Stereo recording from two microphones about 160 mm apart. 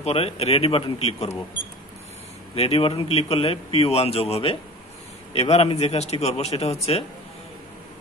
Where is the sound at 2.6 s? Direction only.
35° left (ahead or behind).